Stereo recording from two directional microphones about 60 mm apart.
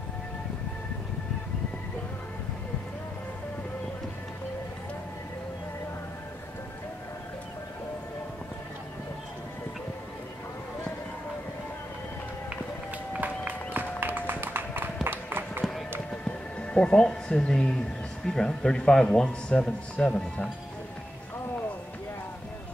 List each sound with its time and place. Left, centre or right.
13.1 s run: right
16.1 s music: left
18.2 s a man's voice: centre